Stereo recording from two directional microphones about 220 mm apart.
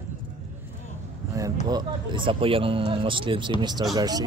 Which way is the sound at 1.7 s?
20° right (ahead or behind).